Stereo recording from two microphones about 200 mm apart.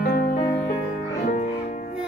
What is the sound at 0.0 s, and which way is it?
Music, 50° left (ahead or behind).